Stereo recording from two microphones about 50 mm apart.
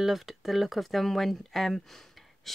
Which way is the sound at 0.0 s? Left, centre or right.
Centre.